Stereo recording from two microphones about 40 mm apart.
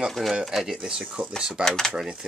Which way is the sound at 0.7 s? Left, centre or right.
Centre.